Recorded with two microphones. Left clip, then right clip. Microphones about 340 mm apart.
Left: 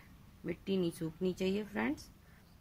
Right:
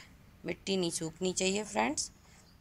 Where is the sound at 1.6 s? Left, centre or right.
Centre.